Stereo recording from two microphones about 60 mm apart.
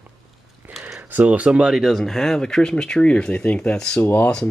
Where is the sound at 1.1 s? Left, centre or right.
Right.